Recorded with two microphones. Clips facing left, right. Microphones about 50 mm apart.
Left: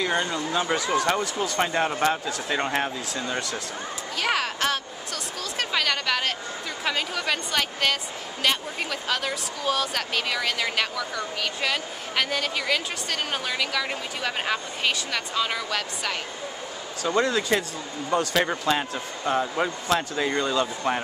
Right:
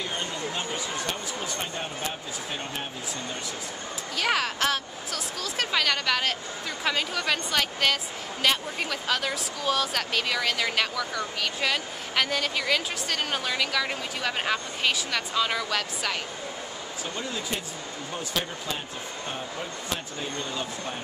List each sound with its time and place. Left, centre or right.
0.0 s speech: left
4.2 s speech: centre
17.0 s speech: left